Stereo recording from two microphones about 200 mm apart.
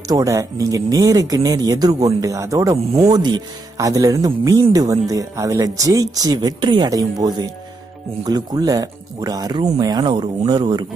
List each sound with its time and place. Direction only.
0.1 s speech: 15° right (ahead or behind)